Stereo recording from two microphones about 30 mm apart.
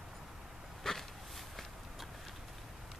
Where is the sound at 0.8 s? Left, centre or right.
Centre.